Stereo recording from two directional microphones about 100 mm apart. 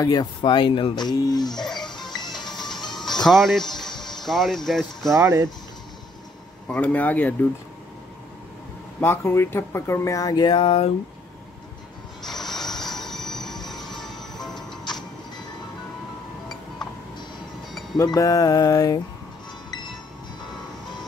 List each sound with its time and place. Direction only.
0.0 s music: 40° left (ahead or behind)
0.4 s speech: 55° left (ahead or behind)
1.6 s music: 5° left (ahead or behind)
2.1 s music: 45° left (ahead or behind)
2.7 s music: centre (ahead or behind)
3.3 s speech: centre (ahead or behind)
5.2 s speech: 30° right (ahead or behind)
6.7 s speech: 15° left (ahead or behind)
9.0 s speech: 25° left (ahead or behind); by 10.9 s 70° left (ahead or behind)
12.2 s mechanisms: 5° left (ahead or behind)
12.8 s music: 5° left (ahead or behind)
17.9 s music: 35° left (ahead or behind)